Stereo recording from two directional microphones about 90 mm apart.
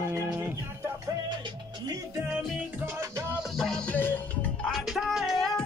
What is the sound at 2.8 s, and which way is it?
Music, 30° right (ahead or behind).